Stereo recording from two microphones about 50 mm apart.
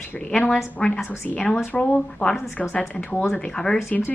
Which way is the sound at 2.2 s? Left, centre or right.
Left.